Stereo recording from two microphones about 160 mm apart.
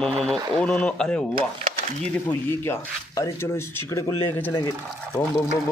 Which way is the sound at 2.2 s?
15° left (ahead or behind).